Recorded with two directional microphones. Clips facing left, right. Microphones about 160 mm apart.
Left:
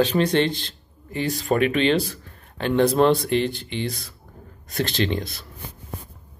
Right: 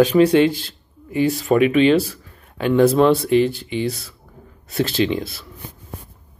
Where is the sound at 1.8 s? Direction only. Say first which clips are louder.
Right 6 dB; 10° right (ahead or behind).